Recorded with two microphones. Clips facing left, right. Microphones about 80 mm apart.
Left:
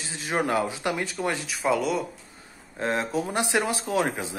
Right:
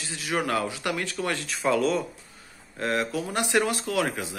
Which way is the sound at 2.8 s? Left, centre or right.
Left.